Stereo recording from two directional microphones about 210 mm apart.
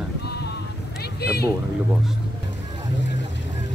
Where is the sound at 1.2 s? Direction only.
50° left (ahead or behind).